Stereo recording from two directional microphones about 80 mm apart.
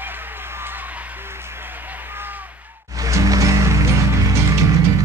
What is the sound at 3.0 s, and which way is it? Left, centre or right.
Music, right.